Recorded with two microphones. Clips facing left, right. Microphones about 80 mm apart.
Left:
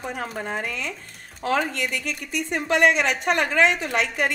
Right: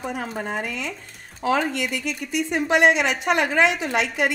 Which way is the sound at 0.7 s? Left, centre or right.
Left.